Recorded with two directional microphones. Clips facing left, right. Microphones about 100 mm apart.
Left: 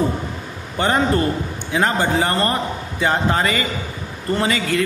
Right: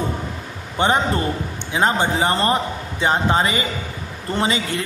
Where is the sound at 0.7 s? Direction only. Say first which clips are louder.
Left 1 dB; 20° right (ahead or behind).